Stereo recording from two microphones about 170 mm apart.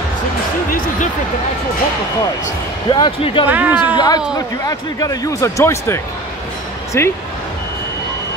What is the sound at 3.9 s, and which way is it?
Speech, 20° left (ahead or behind).